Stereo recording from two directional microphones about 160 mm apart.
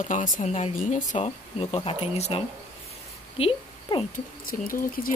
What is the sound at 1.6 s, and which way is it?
Speech, 35° left (ahead or behind).